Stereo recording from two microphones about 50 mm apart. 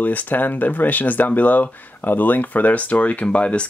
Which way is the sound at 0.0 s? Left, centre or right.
Left.